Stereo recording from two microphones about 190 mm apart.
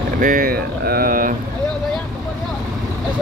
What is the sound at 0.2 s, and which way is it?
Speech, 45° right (ahead or behind).